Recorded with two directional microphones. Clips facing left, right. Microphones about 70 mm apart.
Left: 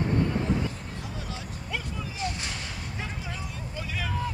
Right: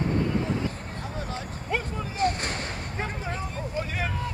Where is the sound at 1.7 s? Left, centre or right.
Right.